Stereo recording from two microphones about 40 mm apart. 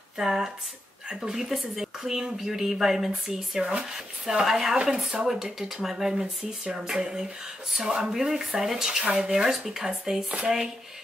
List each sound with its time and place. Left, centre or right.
0.2 s speech: centre
4.7 s speech: right
9.0 s speech: right
9.4 s speech: centre